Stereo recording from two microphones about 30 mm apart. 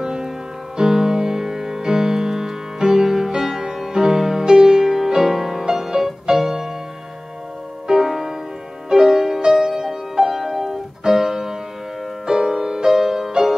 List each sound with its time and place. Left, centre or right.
0.0 s music: centre
7.9 s music: centre